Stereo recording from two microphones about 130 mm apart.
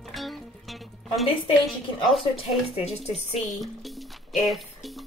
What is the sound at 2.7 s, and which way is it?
Speech, 55° left (ahead or behind).